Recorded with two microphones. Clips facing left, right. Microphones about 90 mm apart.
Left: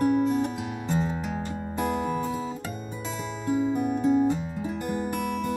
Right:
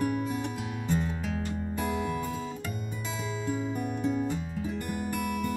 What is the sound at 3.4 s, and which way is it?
Music, 5° left (ahead or behind).